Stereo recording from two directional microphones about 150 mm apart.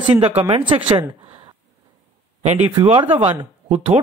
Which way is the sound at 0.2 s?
40° right (ahead or behind).